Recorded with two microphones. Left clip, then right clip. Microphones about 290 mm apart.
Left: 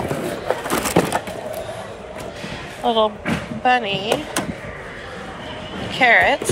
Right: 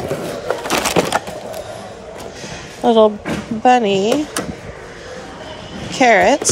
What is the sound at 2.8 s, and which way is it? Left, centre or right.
Speech, right.